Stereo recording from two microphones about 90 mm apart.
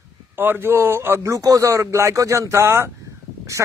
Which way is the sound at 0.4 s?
25° right (ahead or behind).